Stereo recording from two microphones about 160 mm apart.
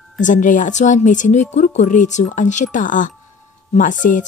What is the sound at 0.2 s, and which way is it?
Speech, 55° left (ahead or behind).